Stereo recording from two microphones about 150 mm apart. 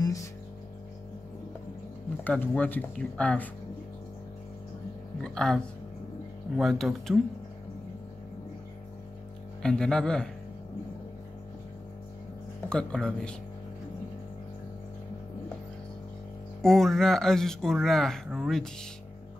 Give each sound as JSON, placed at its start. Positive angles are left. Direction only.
{"t": 0.0, "sound": "music", "side_deg": 20}
{"t": 2.2, "sound": "speech", "side_deg": 10}
{"t": 5.2, "sound": "speech", "side_deg": 5}
{"t": 9.6, "sound": "speech", "side_deg": 5}
{"t": 12.6, "sound": "speech", "side_deg": 5}
{"t": 16.6, "sound": "speech", "side_deg": 5}